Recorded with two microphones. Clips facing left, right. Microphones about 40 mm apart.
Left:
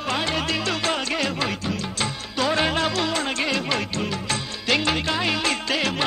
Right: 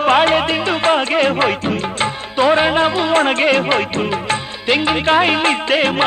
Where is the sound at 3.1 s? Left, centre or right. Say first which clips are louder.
Right 11 dB; right.